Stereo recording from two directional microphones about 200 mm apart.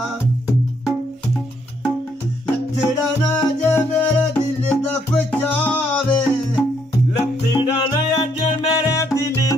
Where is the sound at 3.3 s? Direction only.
10° left (ahead or behind).